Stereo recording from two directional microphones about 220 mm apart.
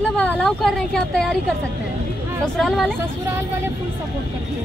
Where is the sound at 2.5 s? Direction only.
Centre (ahead or behind).